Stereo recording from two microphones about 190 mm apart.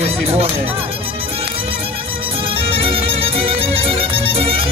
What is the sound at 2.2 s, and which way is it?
Music, 30° right (ahead or behind).